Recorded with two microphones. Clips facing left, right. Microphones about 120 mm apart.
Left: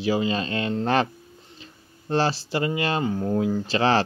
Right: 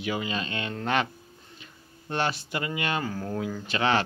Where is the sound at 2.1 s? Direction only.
30° left (ahead or behind).